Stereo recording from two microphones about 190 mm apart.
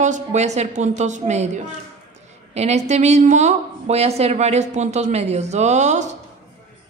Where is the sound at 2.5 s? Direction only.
35° right (ahead or behind).